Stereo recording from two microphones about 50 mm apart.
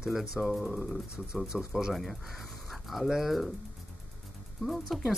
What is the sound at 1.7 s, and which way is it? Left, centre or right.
Speech, centre.